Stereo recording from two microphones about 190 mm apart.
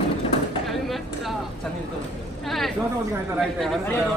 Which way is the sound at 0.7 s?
Centre (ahead or behind).